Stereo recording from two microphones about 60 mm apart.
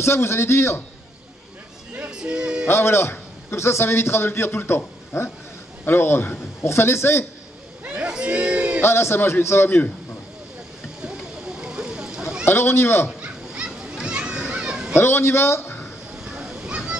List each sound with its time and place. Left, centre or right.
0.0 s a man's voice: left
2.0 s speech: centre
2.6 s a man's voice: left
7.8 s crowd: centre
8.8 s a man's voice: left
11.7 s a sound: centre
12.4 s a man's voice: left
13.2 s children playing: centre
15.0 s a man's voice: left
16.3 s a sound: centre